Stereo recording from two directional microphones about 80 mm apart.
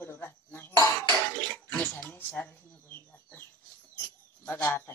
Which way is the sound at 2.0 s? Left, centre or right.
Left.